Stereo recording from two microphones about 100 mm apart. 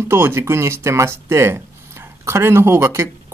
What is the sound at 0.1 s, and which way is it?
Speech, 25° right (ahead or behind).